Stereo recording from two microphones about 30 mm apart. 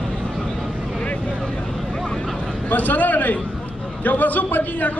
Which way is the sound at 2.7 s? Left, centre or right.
Left.